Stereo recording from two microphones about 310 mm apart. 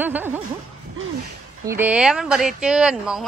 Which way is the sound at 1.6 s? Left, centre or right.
Centre.